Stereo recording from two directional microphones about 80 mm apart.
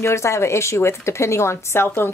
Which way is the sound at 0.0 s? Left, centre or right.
Left.